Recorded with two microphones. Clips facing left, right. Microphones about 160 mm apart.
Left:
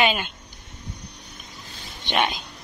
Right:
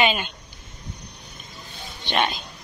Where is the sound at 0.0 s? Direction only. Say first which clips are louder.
Even; 5° left (ahead or behind).